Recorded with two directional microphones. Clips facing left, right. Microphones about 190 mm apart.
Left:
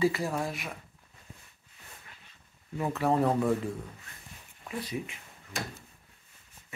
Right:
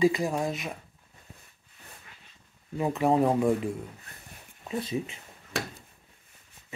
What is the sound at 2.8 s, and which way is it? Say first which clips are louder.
A man's voice: right 3 dB; 15° right (ahead or behind).